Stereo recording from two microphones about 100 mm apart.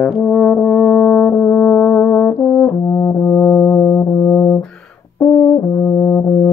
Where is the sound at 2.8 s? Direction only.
25° left (ahead or behind).